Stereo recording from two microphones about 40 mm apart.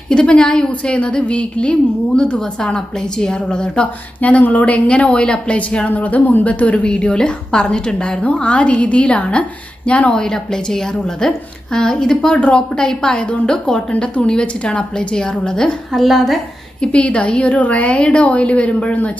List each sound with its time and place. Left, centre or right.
0.1 s a woman's voice: left
3.8 s a woman's voice: left
5.9 s a woman's voice: left
10.1 s a woman's voice: centre
15.9 s a woman's voice: centre
16.8 s a woman's voice: left